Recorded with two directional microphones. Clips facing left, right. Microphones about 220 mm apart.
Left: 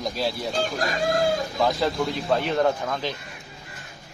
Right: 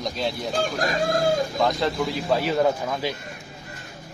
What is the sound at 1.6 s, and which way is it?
A man's voice, centre (ahead or behind).